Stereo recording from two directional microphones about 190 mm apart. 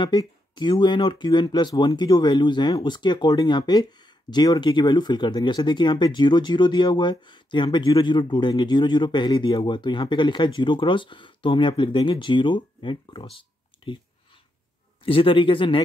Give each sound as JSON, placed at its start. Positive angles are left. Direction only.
{"t": 0.0, "sound": "speech", "side_deg": 25}
{"t": 15.0, "sound": "speech", "side_deg": 30}